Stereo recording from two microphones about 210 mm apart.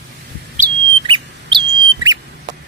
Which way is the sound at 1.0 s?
25° right (ahead or behind).